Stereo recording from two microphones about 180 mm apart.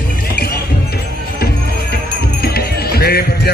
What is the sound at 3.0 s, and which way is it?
Speech, 60° left (ahead or behind).